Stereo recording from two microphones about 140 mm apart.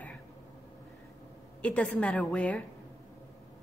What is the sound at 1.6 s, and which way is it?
A woman's voice, 10° left (ahead or behind).